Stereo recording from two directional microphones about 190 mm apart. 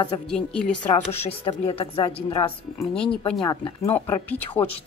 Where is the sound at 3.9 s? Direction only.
10° left (ahead or behind).